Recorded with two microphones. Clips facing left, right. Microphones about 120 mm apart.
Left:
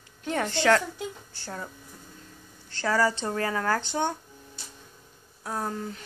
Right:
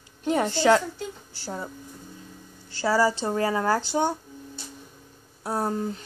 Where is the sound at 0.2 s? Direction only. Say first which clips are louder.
Right 4 dB; 15° right (ahead or behind).